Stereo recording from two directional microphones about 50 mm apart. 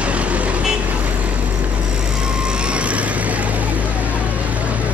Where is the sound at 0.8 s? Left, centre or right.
Right.